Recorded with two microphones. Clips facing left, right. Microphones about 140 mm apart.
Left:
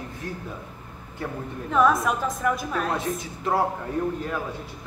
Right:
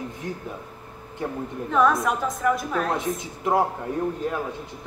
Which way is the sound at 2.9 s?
20° right (ahead or behind).